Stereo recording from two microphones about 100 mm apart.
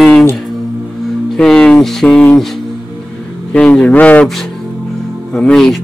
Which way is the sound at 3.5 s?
10° left (ahead or behind).